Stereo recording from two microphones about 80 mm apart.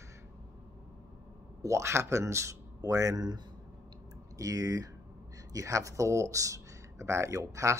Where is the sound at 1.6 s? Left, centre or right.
Right.